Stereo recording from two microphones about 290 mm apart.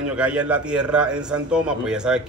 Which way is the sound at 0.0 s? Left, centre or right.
Centre.